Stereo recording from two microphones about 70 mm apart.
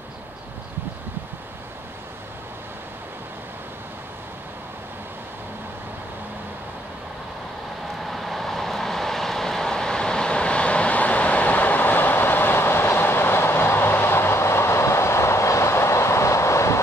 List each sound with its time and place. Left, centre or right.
8.0 s vehicle: centre; by 16.8 s left